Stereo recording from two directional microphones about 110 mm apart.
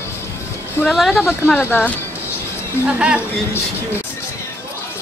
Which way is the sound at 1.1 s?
20° left (ahead or behind).